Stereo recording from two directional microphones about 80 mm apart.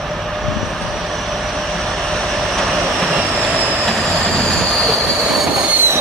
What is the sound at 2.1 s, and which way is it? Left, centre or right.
Vehicle, centre.